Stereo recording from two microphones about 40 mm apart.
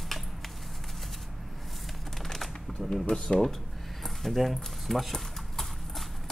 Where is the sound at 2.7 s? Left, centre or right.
Left.